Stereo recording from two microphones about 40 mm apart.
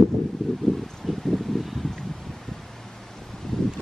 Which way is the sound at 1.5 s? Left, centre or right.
Centre.